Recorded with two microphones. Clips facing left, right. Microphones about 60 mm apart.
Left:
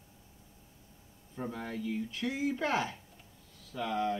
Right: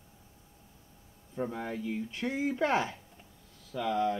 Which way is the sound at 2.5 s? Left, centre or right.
Right.